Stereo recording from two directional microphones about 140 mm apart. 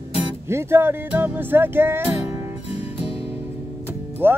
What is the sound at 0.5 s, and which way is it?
Music, 20° right (ahead or behind).